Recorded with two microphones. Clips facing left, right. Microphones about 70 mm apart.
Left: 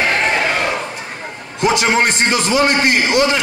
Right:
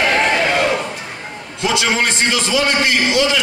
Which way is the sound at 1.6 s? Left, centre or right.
Left.